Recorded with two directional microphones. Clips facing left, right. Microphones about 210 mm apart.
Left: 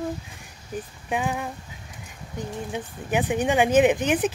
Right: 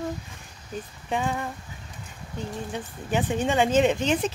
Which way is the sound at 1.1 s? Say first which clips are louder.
Left 1 dB; 10° left (ahead or behind).